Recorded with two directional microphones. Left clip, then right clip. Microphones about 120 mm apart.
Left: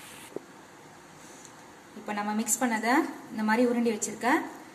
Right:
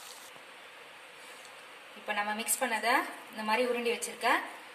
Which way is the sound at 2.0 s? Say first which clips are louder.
Left 1 dB; 20° right (ahead or behind).